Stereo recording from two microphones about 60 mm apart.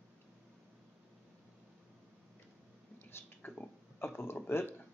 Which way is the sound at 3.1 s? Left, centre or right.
Left.